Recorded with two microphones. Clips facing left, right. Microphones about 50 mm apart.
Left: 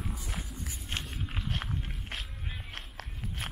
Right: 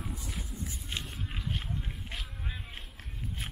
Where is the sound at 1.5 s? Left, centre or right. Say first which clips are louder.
Left 1 dB; left.